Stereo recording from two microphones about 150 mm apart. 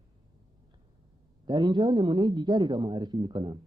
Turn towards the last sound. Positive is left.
turn(degrees=-30)  # may be behind; listen again after turning